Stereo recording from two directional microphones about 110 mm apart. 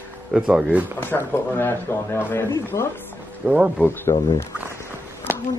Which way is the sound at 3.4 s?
10° right (ahead or behind).